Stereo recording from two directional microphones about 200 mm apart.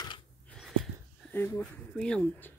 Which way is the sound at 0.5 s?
Centre (ahead or behind).